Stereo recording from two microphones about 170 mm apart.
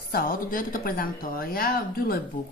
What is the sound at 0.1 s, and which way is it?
Speech, 60° left (ahead or behind).